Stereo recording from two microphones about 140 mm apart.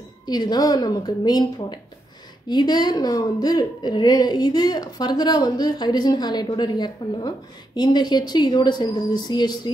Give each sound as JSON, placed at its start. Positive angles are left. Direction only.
{"t": 0.3, "sound": "a woman's voice", "side_deg": 30}